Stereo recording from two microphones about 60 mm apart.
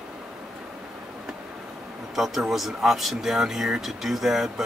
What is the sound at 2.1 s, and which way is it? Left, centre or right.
Speech, centre.